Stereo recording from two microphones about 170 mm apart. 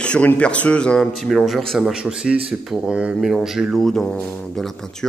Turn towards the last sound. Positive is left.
turn(degrees=0)  # may be behind; listen again after turning